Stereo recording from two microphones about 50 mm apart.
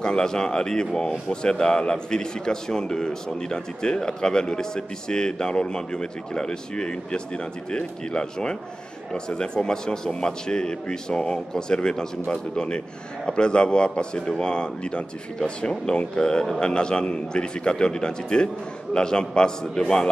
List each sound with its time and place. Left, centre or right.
0.0 s speech: centre